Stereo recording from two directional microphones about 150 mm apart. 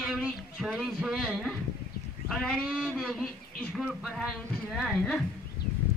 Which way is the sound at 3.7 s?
Centre (ahead or behind).